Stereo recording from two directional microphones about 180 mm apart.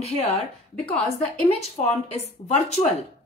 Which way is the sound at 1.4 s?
35° left (ahead or behind).